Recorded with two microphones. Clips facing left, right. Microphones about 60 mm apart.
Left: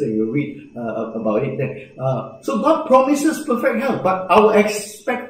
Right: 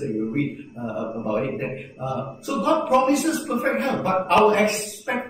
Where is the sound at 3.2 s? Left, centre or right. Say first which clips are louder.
Left 5 dB; left.